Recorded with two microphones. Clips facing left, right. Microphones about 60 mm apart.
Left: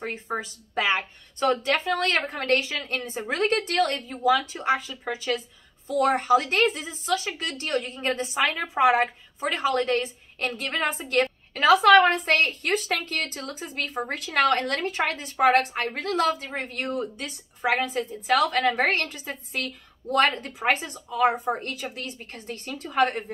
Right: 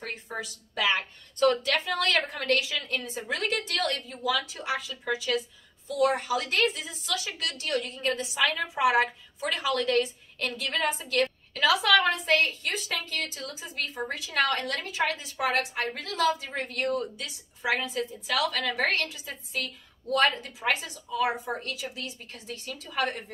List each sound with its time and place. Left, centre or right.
0.3 s a woman's voice: left
16.4 s a woman's voice: left
17.2 s a woman's voice: left